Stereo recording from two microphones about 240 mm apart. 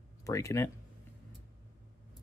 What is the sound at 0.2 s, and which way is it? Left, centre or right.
Speech, centre.